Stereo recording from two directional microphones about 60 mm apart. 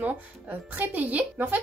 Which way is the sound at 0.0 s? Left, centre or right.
Right.